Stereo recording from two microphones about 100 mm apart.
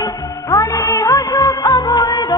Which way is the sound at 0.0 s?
35° left (ahead or behind).